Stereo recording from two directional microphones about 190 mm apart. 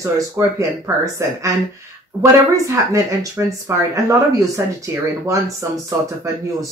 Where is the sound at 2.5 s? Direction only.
15° right (ahead or behind).